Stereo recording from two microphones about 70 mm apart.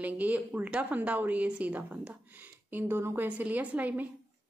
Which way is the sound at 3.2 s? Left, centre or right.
Right.